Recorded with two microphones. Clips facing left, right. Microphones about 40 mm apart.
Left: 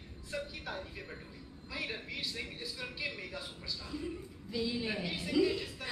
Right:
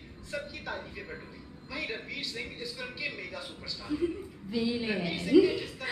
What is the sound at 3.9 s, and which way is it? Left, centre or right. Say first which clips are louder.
A man's voice: right 12 dB; centre.